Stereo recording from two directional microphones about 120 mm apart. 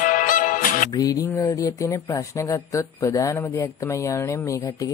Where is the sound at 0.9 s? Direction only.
25° left (ahead or behind).